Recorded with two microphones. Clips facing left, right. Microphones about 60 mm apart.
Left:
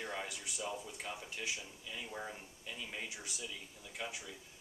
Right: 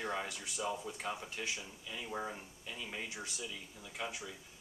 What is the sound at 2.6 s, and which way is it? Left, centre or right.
Speech, centre.